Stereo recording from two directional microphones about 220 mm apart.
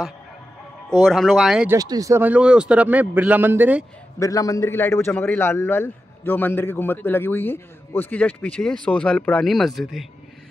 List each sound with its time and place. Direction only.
1.0 s speech: centre (ahead or behind)
1.8 s a man's voice: 15° right (ahead or behind)
4.2 s a man's voice: 15° left (ahead or behind)